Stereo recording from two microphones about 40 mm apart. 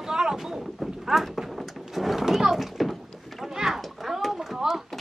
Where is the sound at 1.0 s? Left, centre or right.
Centre.